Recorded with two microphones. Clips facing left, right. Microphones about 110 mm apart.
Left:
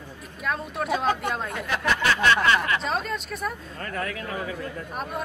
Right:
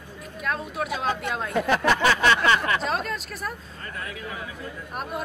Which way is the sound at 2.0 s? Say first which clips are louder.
Right 1 dB; 30° right (ahead or behind).